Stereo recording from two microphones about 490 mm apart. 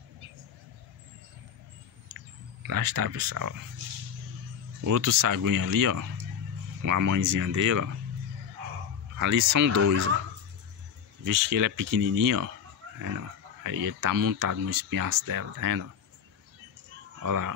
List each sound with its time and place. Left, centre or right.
2.0 s speech: right
4.8 s speech: right
9.2 s speech: right
11.2 s speech: right
13.7 s speech: right
17.2 s speech: right